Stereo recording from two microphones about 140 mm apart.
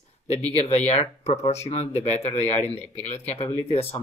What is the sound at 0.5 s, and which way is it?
Speech, 45° left (ahead or behind).